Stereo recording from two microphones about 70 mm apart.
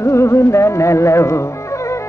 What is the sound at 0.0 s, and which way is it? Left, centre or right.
Music, left.